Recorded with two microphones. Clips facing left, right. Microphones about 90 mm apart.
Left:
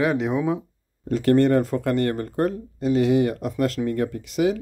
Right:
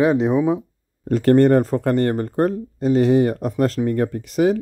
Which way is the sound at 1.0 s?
45° right (ahead or behind).